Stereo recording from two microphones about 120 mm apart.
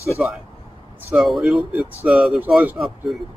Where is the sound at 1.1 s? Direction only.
Centre (ahead or behind).